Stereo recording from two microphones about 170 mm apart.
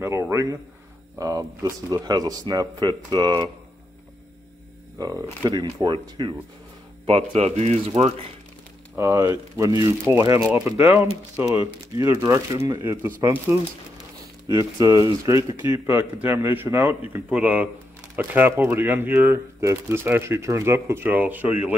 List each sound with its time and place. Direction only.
0.0 s speech: 15° right (ahead or behind)
4.9 s speech: 20° right (ahead or behind)
7.1 s speech: 40° right (ahead or behind)
8.9 s speech: 20° right (ahead or behind)
12.8 s speech: 15° right (ahead or behind)
14.5 s speech: 20° right (ahead or behind)